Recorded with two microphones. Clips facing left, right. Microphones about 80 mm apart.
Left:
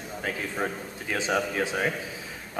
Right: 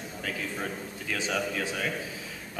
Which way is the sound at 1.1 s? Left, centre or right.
Left.